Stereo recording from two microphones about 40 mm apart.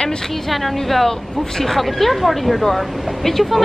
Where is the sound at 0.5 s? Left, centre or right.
Centre.